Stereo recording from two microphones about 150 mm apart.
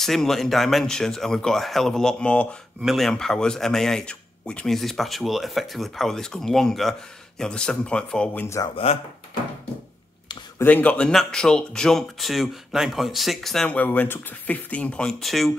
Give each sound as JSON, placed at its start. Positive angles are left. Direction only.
{"t": 0.0, "sound": "speech", "side_deg": 0}
{"t": 8.9, "sound": "speech", "side_deg": 40}
{"t": 10.6, "sound": "speech", "side_deg": 10}